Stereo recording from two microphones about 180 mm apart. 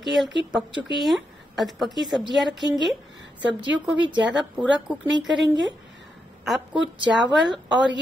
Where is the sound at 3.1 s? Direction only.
85° right.